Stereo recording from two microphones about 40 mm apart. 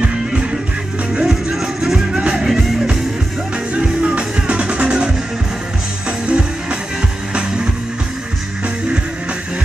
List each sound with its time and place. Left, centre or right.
1.2 s music: centre
2.1 s music: centre
3.7 s music: right